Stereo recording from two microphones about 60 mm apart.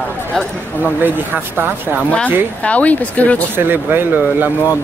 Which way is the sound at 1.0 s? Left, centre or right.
Right.